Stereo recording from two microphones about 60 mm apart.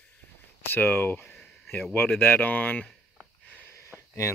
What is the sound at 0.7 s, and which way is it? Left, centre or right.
Speech, left.